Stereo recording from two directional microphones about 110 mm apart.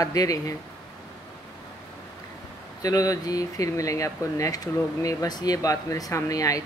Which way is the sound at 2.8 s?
35° left (ahead or behind).